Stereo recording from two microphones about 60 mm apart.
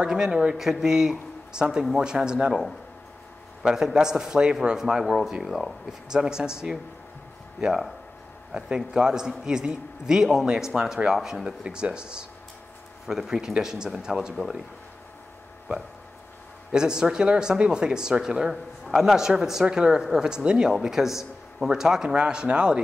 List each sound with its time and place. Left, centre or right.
0.0 s speech: centre
16.7 s speech: centre